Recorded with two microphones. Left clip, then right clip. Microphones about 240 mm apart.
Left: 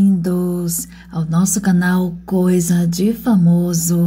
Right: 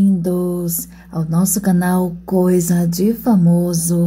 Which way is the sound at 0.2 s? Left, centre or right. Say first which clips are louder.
Right 1 dB; centre.